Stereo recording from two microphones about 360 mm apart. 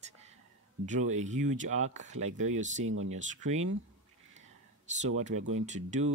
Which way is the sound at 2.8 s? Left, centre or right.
Right.